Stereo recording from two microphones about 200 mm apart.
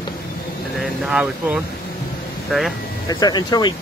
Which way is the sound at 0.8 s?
5° right (ahead or behind).